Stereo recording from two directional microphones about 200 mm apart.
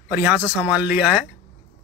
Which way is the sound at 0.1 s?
10° right (ahead or behind).